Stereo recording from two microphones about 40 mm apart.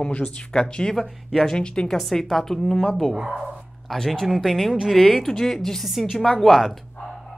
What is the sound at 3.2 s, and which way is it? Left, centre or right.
Speech, right.